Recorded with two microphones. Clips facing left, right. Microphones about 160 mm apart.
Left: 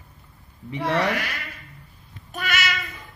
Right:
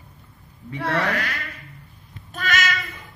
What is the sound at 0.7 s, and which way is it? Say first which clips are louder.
Speech: left 1 dB; 15° left (ahead or behind).